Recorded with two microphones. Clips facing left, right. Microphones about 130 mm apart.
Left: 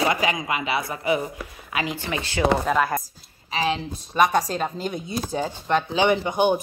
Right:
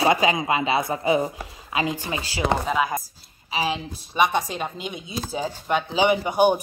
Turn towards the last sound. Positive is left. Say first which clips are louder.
# right 1 dB
turn(degrees=-10)  # may be behind; listen again after turning